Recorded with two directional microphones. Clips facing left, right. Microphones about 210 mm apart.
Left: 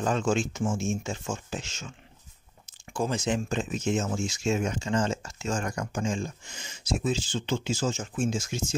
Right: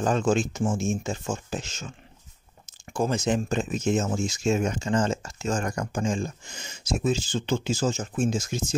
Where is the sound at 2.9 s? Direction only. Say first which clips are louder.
Right 3 dB; 40° right (ahead or behind).